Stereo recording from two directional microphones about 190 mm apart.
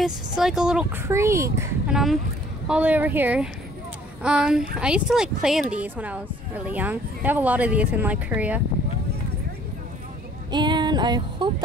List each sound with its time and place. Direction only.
0.0 s speech: centre (ahead or behind)
1.9 s speech: centre (ahead or behind)
10.5 s music: 25° right (ahead or behind)